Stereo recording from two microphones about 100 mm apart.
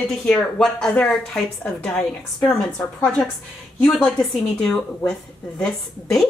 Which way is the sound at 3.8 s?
5° left (ahead or behind).